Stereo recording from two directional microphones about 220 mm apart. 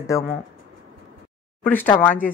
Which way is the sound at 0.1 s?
15° left (ahead or behind).